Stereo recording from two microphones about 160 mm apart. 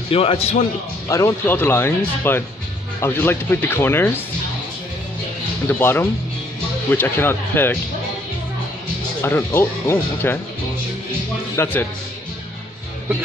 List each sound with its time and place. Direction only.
0.1 s a man's voice: 35° left (ahead or behind)
1.0 s speech: 20° left (ahead or behind)
5.7 s speech: 15° left (ahead or behind)
9.2 s speech: 15° left (ahead or behind)
11.5 s speech: 15° left (ahead or behind)